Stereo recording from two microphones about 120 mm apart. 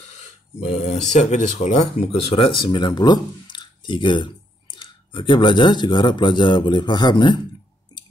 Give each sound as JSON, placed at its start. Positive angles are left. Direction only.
{"t": 0.6, "sound": "speech", "side_deg": 70}
{"t": 1.6, "sound": "speech", "side_deg": 85}
{"t": 2.1, "sound": "speech", "side_deg": 50}